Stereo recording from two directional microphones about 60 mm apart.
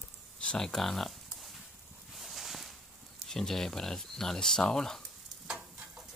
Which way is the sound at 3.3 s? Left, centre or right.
Centre.